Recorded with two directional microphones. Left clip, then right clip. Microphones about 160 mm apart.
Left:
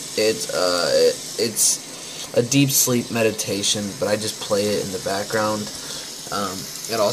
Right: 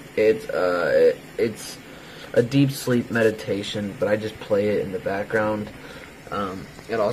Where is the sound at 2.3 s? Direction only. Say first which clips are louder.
Left 2 dB; 5° left (ahead or behind).